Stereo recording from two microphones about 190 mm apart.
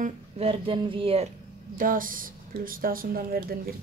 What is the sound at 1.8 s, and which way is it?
Speech, 45° right (ahead or behind).